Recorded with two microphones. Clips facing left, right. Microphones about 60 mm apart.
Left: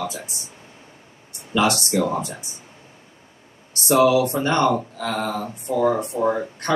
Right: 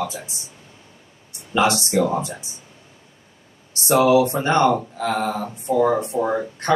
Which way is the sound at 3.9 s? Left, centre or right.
Right.